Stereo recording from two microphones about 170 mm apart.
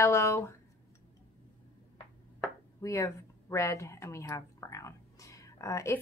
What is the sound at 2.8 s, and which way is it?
A woman's voice, 20° left (ahead or behind).